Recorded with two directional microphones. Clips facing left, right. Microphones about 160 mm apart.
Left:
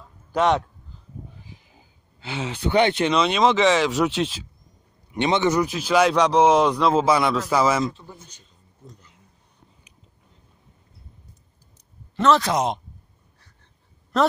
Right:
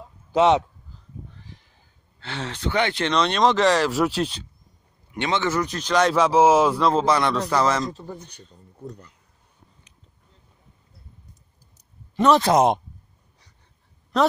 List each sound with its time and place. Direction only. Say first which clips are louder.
0.3 s speech: right 3 dB; 20° right (ahead or behind)
1.3 s a sound: left 1 dB; 5° left (ahead or behind)
2.8 s speech: left 4 dB; 20° left (ahead or behind)
3.1 s speech: left 1 dB; 5° left (ahead or behind)
5.1 s a man's voice: left 3 dB; 20° left (ahead or behind)
5.7 s speech: left 2 dB; 5° left (ahead or behind)
7.9 s speech: right 7 dB; 50° right (ahead or behind)
8.3 s speech: right 7 dB; 65° right (ahead or behind)
12.5 s speech: right 6 dB; 55° right (ahead or behind)
14.1 s speech: even; centre (ahead or behind)